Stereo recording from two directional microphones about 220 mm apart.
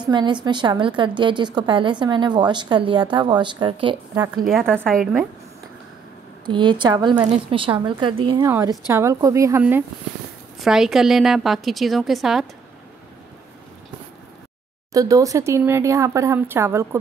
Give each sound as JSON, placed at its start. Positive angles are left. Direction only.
{"t": 0.0, "sound": "a woman's voice", "side_deg": -20}
{"t": 4.5, "sound": "a woman's voice", "side_deg": 0}
{"t": 6.4, "sound": "a woman's voice", "side_deg": -20}
{"t": 14.9, "sound": "a woman's voice", "side_deg": -15}